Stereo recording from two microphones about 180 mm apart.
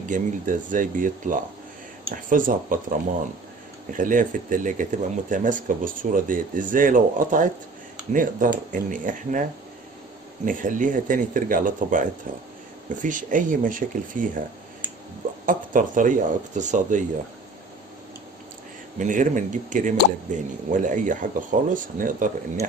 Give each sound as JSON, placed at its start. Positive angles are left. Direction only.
{"t": 0.1, "sound": "speech", "side_deg": -45}
{"t": 3.9, "sound": "speech", "side_deg": -45}
{"t": 15.4, "sound": "speech", "side_deg": -45}
{"t": 18.9, "sound": "speech", "side_deg": -45}